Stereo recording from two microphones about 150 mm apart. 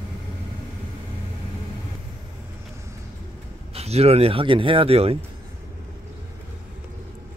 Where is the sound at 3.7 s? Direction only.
45° right (ahead or behind).